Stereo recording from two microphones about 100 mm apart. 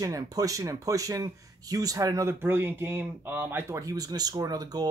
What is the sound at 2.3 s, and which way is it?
Speech, 20° right (ahead or behind).